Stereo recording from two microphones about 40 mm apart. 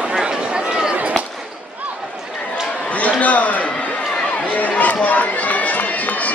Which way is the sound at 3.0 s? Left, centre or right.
Left.